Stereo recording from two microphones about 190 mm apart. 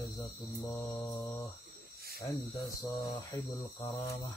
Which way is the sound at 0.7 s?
15° left (ahead or behind).